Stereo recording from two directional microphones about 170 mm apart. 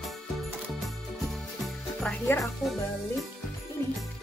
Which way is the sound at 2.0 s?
15° left (ahead or behind).